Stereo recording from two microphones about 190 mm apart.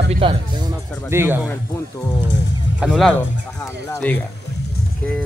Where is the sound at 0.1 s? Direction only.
25° right (ahead or behind).